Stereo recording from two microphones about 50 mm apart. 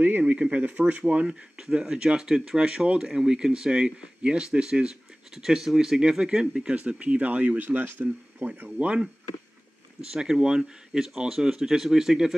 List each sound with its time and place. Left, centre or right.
0.3 s speech: right
1.2 s speech: centre
5.3 s speech: centre
6.7 s speech: right
8.6 s speech: right
10.1 s speech: centre